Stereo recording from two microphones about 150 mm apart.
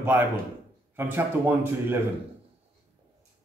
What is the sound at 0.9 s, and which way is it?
Speech, 15° right (ahead or behind).